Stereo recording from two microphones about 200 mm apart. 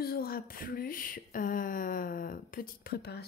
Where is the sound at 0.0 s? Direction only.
50° left (ahead or behind).